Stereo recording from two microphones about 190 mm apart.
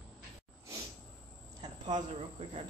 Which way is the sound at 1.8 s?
25° right (ahead or behind).